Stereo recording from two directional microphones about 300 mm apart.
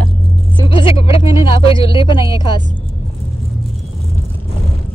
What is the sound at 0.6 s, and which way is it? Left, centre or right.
Speech, centre.